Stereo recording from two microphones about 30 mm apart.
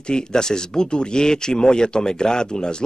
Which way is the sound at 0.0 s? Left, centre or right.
Left.